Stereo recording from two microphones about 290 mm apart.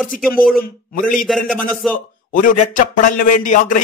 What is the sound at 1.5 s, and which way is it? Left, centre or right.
Speech, centre.